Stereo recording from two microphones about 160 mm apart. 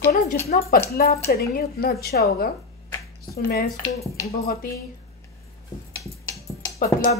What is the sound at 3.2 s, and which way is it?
Speech, 70° left (ahead or behind).